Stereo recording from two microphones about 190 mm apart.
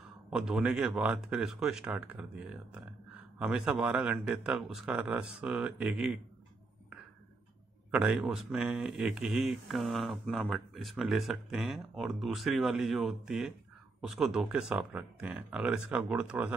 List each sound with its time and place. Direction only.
0.3 s speech: 5° right (ahead or behind)
7.9 s speech: 5° right (ahead or behind)